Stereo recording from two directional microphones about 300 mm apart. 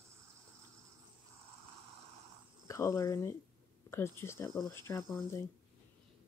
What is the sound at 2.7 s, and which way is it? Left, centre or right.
Speech, centre.